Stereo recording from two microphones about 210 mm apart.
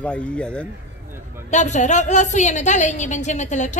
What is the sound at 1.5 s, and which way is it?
A woman's voice, 35° left (ahead or behind).